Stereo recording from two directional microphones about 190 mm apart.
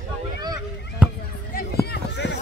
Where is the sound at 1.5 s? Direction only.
55° left (ahead or behind).